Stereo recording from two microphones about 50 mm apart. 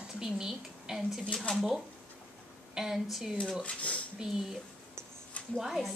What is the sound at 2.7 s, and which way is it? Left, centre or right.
Speech, centre.